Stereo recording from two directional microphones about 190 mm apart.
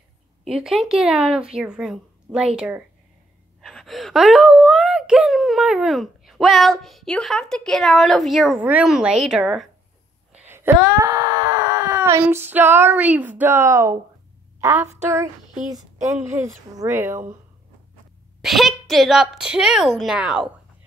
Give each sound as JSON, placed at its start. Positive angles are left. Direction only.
{"t": 0.5, "sound": "speech", "side_deg": 0}
{"t": 10.3, "sound": "wail", "side_deg": -10}
{"t": 14.6, "sound": "a woman's voice", "side_deg": -15}
{"t": 18.4, "sound": "speech", "side_deg": 0}